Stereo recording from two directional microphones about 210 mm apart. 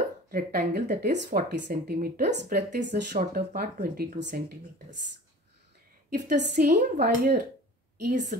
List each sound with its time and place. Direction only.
0.3 s speech: 45° right (ahead or behind)
6.0 s a woman's voice: 40° right (ahead or behind)
8.1 s speech: 35° right (ahead or behind)